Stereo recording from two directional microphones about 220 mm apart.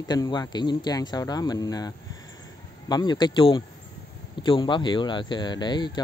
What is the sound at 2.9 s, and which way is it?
Speech, 20° left (ahead or behind).